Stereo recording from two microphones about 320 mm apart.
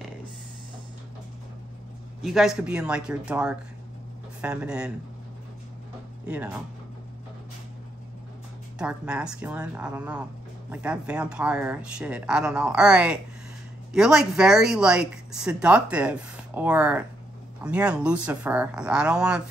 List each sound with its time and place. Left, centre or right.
2.2 s speech: centre
6.2 s speech: centre
8.7 s speech: centre